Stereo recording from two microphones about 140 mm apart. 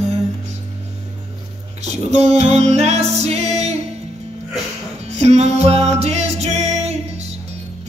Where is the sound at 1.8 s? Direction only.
50° right (ahead or behind).